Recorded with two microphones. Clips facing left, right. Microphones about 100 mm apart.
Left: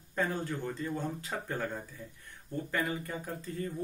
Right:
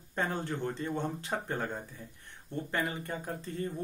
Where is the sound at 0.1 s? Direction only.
25° right (ahead or behind).